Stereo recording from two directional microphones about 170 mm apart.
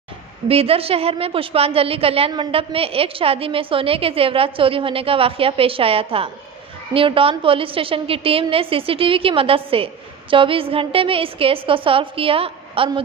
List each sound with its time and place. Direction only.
0.5 s a woman's voice: 35° right (ahead or behind)